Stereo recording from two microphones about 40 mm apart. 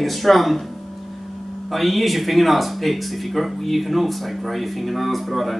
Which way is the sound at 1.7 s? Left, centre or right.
Centre.